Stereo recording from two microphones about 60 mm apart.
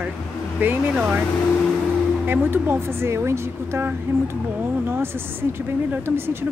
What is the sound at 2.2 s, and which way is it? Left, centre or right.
Speech, right.